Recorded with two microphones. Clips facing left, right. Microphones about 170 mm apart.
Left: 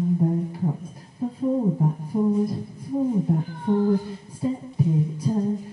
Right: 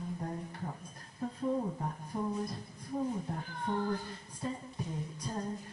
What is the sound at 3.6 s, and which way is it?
Music, 15° left (ahead or behind).